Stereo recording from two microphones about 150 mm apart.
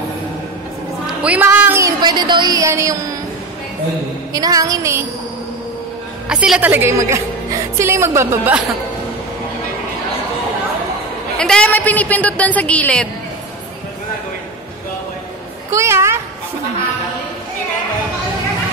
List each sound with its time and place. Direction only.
1.0 s a woman's voice: 10° right (ahead or behind)
4.3 s music: 25° right (ahead or behind)
6.2 s a woman's voice: 5° right (ahead or behind)
11.3 s a woman's voice: 5° left (ahead or behind)
15.7 s a woman's voice: 20° right (ahead or behind)